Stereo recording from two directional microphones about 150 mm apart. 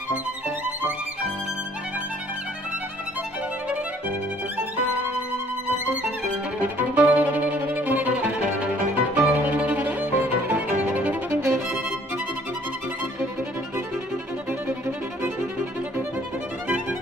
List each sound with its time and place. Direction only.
6.6 s violin: 10° right (ahead or behind)
9.1 s music: 10° right (ahead or behind)